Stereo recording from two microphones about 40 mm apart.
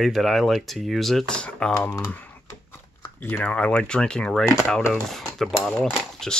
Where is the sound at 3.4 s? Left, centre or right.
Left.